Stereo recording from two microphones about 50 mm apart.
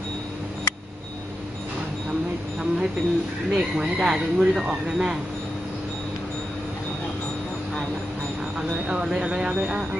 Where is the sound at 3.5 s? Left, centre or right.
Centre.